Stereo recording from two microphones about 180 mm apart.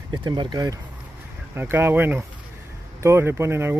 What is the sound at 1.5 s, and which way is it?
Speech, 10° right (ahead or behind).